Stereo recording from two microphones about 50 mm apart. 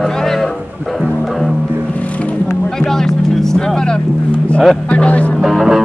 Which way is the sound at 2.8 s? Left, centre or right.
Centre.